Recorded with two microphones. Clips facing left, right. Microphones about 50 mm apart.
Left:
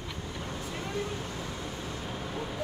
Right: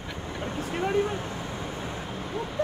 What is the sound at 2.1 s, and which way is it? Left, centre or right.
Vehicle, centre.